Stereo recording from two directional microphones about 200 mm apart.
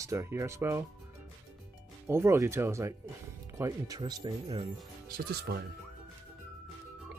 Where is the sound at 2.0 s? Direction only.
15° right (ahead or behind).